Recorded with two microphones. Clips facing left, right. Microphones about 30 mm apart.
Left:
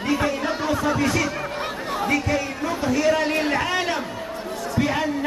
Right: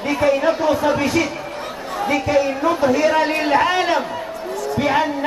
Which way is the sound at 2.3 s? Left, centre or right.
Right.